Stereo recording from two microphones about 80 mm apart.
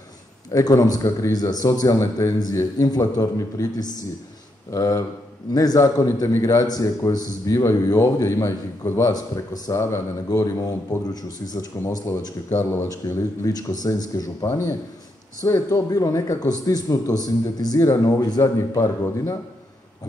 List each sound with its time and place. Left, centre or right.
0.5 s a man's voice: left
9.0 s a man's voice: left
9.7 s a man's voice: left
13.0 s a man's voice: left
14.5 s a man's voice: left